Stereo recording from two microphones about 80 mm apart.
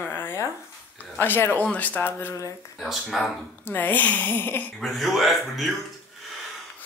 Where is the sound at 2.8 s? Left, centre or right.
Centre.